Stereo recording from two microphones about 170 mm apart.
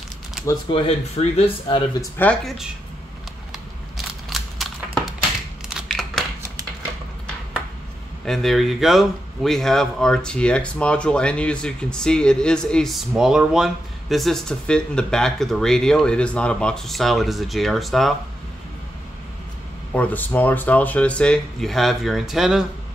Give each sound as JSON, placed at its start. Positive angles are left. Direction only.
{"t": 0.5, "sound": "speech", "side_deg": 30}
{"t": 2.0, "sound": "speech", "side_deg": 10}
{"t": 4.3, "sound": "a sound", "side_deg": 0}
{"t": 8.3, "sound": "speech", "side_deg": 0}
{"t": 19.9, "sound": "speech", "side_deg": 10}